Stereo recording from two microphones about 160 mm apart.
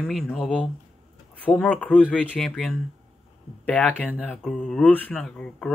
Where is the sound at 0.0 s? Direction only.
Centre (ahead or behind).